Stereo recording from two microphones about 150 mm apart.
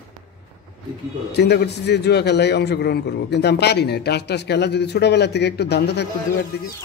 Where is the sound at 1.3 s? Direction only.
90° left.